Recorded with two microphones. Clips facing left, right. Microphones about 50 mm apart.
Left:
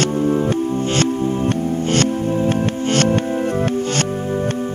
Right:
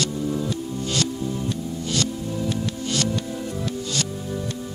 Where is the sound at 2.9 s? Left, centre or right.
Left.